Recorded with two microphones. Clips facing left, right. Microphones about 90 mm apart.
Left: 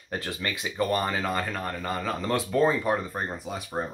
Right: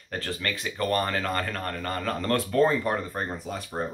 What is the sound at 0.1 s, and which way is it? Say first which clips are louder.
Speech: even; 15° left (ahead or behind).